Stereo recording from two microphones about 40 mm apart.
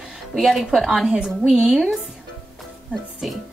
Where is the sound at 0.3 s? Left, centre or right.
Centre.